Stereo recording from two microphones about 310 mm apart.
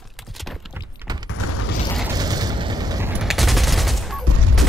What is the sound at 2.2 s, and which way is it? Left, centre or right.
Fusillade, centre.